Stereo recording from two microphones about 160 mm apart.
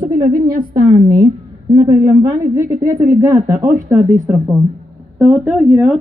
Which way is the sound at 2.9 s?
55° right (ahead or behind).